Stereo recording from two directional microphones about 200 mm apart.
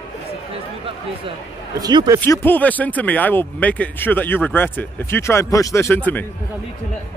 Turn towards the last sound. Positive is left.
turn(degrees=10)  # may be behind; listen again after turning